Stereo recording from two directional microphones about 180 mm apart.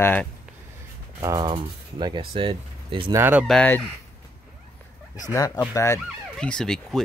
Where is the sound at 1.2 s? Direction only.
20° right (ahead or behind).